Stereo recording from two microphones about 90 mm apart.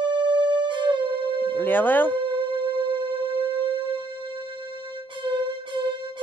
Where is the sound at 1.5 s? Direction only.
20° left (ahead or behind).